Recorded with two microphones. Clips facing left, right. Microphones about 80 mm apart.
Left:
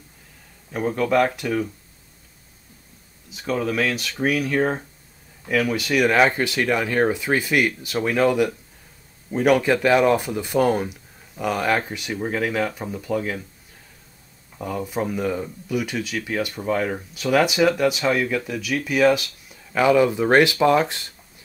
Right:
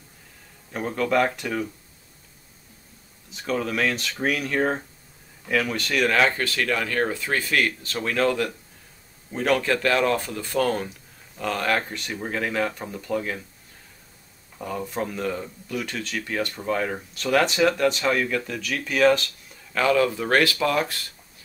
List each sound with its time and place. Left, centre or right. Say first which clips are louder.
0.7 s speech: left 3 dB; centre
3.3 s speech: left 2 dB; centre
14.6 s speech: left 3 dB; centre; by 21.1 s left